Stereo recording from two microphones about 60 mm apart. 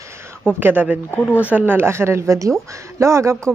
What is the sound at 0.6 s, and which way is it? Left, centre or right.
Speech, right.